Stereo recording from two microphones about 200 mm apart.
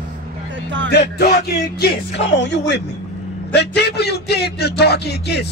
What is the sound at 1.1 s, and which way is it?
A man's voice, 50° left (ahead or behind).